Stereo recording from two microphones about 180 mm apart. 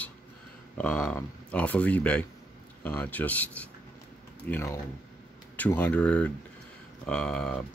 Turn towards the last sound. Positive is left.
turn(degrees=5)  # may be behind; listen again after turning